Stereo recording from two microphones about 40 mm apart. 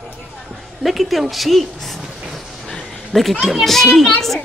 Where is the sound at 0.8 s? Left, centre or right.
Centre.